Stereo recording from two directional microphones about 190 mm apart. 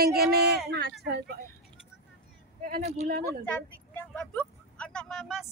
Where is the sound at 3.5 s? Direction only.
10° left (ahead or behind).